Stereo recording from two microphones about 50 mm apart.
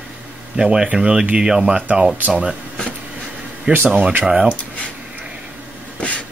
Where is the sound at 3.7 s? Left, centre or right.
Right.